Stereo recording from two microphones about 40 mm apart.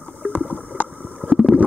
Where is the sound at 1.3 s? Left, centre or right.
Centre.